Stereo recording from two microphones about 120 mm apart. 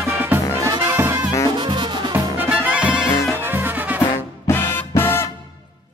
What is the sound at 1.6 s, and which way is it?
Music, 40° right (ahead or behind).